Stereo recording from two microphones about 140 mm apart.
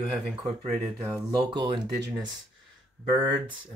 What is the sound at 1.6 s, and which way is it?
Speech, 35° right (ahead or behind).